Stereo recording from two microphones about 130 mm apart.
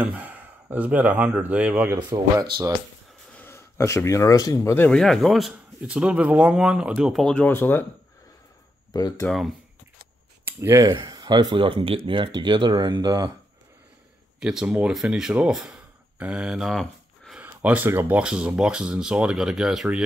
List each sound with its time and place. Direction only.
0.0 s speech: 10° right (ahead or behind)
2.0 s speech: 30° right (ahead or behind)
3.3 s speech: 20° left (ahead or behind)
4.8 s a man's voice: 5° left (ahead or behind)
8.9 s speech: 30° left (ahead or behind)
9.2 s a man's voice: centre (ahead or behind)
10.4 s a sound: 20° right (ahead or behind)
11.0 s speech: 30° right (ahead or behind)
14.4 s speech: 5° right (ahead or behind)
17.4 s a man's voice: 10° right (ahead or behind)